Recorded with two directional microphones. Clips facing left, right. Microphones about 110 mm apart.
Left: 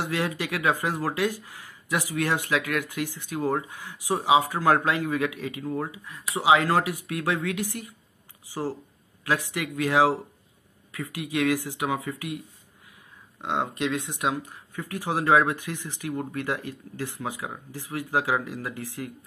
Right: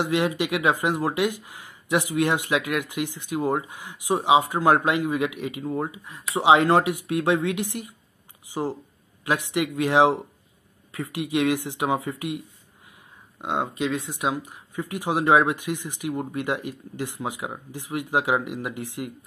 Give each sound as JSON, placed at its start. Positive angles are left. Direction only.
{"t": 0.0, "sound": "speech", "side_deg": -15}
{"t": 13.4, "sound": "speech", "side_deg": -10}
{"t": 13.7, "sound": "speech", "side_deg": 0}
{"t": 14.5, "sound": "speech", "side_deg": -15}